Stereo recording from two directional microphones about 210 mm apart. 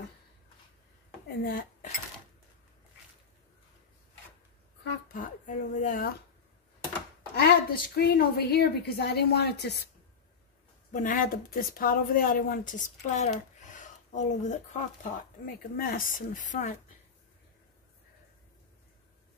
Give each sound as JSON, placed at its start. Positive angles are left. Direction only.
{"t": 1.4, "sound": "speech", "side_deg": 45}
{"t": 5.0, "sound": "speech", "side_deg": 40}
{"t": 7.3, "sound": "a woman's voice", "side_deg": 50}
{"t": 10.9, "sound": "speech", "side_deg": 40}